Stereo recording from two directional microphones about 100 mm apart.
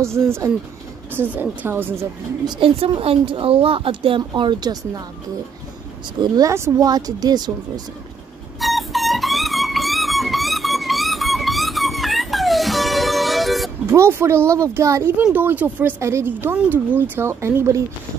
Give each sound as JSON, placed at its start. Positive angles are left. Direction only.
{"t": 0.0, "sound": "speech", "side_deg": -30}
{"t": 2.6, "sound": "speech", "side_deg": -70}
{"t": 4.3, "sound": "a woman's voice", "side_deg": -50}
{"t": 6.2, "sound": "speech", "side_deg": -40}
{"t": 8.5, "sound": "music", "side_deg": 0}
{"t": 13.8, "sound": "speech", "side_deg": -30}
{"t": 15.3, "sound": "speech", "side_deg": -20}